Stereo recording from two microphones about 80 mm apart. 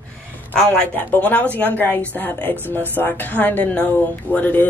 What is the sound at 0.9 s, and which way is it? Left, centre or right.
Speech, left.